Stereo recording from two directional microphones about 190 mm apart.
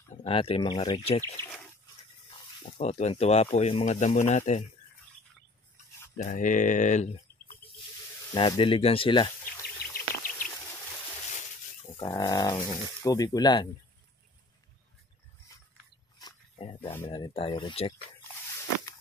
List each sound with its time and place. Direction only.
0.2 s speech: 30° left (ahead or behind)
2.6 s speech: 35° left (ahead or behind)
6.1 s speech: 40° left (ahead or behind)
8.3 s speech: 25° left (ahead or behind)
9.8 s bird: 55° left (ahead or behind)
11.8 s speech: 20° left (ahead or behind)
16.2 s pig: 25° left (ahead or behind)
17.1 s speech: 25° left (ahead or behind)